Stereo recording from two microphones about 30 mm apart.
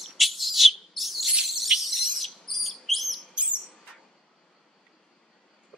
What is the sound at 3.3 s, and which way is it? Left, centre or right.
Bird, right.